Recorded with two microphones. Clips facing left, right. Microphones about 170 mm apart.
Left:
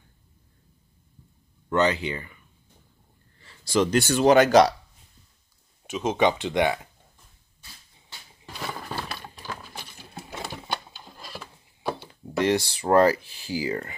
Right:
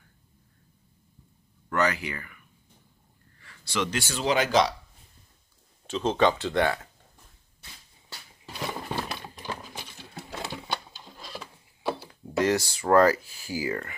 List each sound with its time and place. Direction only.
1.7 s speech: 25° left (ahead or behind)
3.6 s speech: 40° left (ahead or behind)
4.1 s speech: 55° left (ahead or behind)
5.9 s speech: 15° left (ahead or behind)
8.6 s a sound: 15° right (ahead or behind)
11.1 s a sound: centre (ahead or behind)
12.4 s speech: 25° left (ahead or behind)